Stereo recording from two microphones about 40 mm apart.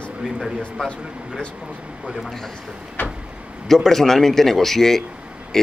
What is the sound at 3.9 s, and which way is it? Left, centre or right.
A man's voice, centre.